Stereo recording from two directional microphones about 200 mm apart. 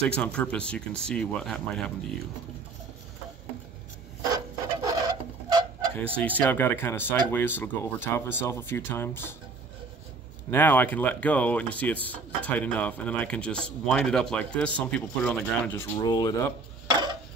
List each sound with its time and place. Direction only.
0.1 s speech: 5° left (ahead or behind)
4.8 s patter: 20° right (ahead or behind)
6.2 s speech: 10° left (ahead or behind)
10.5 s speech: 10° left (ahead or behind)
16.0 s speech: 20° left (ahead or behind)
16.9 s a sound: 20° right (ahead or behind)